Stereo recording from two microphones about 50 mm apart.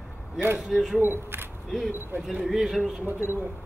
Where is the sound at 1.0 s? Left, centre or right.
Right.